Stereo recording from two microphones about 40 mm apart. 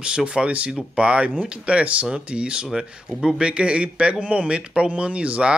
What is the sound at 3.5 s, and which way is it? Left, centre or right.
Speech, right.